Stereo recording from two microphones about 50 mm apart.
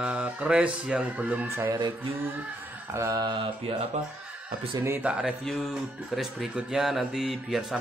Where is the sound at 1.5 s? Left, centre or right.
Right.